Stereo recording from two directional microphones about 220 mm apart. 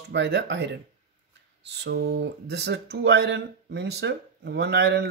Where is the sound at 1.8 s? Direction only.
45° right (ahead or behind).